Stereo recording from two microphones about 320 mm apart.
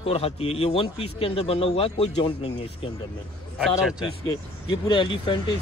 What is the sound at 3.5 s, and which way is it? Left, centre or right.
Speech, centre.